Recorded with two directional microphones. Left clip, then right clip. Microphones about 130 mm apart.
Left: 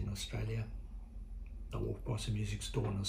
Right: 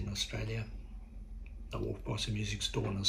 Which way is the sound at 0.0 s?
25° left (ahead or behind).